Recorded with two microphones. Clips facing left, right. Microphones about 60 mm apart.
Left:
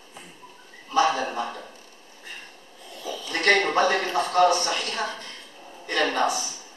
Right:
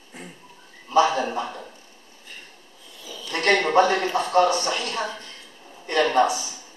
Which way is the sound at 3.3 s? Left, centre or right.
Right.